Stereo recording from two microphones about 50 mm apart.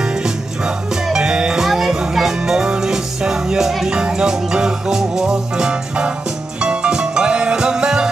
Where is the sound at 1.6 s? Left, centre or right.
Centre.